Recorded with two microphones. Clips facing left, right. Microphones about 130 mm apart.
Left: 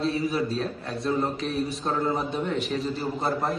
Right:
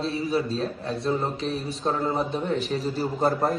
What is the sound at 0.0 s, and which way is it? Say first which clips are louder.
A man's voice: even; 30° right (ahead or behind).